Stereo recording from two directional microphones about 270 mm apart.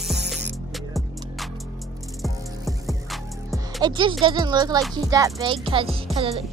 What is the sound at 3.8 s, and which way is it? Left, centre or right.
Speech, centre.